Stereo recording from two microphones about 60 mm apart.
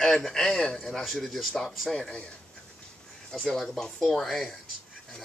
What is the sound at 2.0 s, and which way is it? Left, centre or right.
Speech, centre.